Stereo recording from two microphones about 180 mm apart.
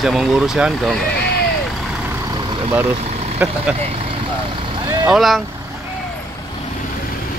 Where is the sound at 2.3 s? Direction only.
25° right (ahead or behind).